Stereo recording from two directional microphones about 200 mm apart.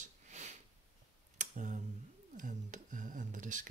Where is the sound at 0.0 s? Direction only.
35° right (ahead or behind).